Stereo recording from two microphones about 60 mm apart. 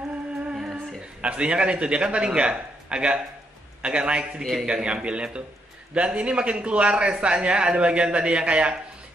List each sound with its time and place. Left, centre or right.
0.5 s a man's voice: centre
4.4 s a man's voice: centre
4.6 s a man's voice: centre